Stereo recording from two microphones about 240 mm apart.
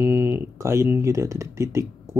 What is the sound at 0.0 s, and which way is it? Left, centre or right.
Speech, centre.